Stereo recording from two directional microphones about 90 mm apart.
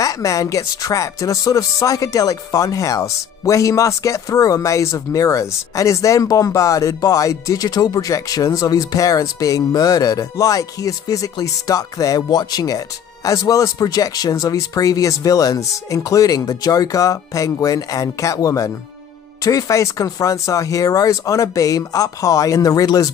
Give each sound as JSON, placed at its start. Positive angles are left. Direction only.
{"t": 0.0, "sound": "speech", "side_deg": 40}